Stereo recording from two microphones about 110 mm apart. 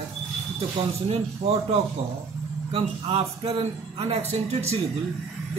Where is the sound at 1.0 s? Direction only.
70° right (ahead or behind).